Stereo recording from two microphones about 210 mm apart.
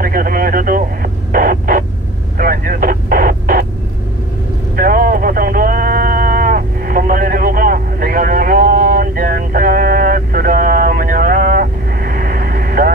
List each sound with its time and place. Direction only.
0.0 s speech: 40° right (ahead or behind)
2.3 s radio: 45° right (ahead or behind)
4.7 s a sound: 45° right (ahead or behind)